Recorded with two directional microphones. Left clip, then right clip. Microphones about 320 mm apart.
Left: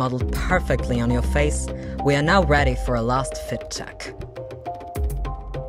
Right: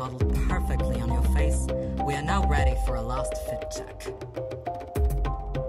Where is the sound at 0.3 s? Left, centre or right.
Left.